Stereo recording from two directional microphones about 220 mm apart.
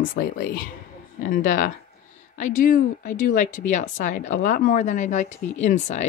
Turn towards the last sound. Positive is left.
turn(degrees=30)  # may be behind; listen again after turning